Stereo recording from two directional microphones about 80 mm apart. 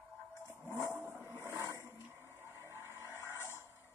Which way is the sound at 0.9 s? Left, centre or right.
Right.